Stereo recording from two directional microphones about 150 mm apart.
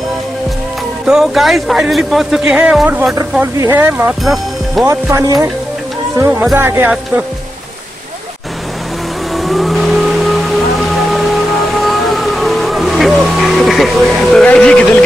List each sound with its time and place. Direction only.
1.0 s a man's voice: 5° right (ahead or behind)
4.2 s speech: centre (ahead or behind)
4.8 s speech: 20° right (ahead or behind)
6.5 s speech: 15° right (ahead or behind)
9.4 s vehicle: centre (ahead or behind)
11.8 s music: centre (ahead or behind)